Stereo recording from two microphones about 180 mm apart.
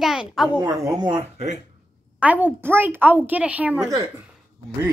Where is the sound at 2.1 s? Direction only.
10° right (ahead or behind).